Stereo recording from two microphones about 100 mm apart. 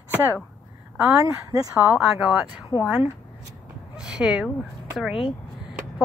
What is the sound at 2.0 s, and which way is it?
Speech, 10° right (ahead or behind).